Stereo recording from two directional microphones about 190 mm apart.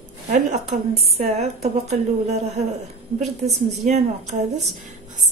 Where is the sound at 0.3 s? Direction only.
35° right (ahead or behind).